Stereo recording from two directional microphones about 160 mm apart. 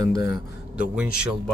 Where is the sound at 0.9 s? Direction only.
5° right (ahead or behind).